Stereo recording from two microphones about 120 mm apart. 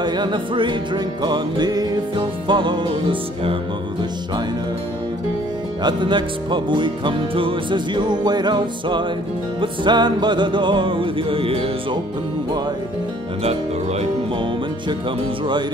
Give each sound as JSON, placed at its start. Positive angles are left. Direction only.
{"t": 0.0, "sound": "music", "side_deg": -40}
{"t": 5.8, "sound": "music", "side_deg": -40}
{"t": 13.4, "sound": "speech", "side_deg": -60}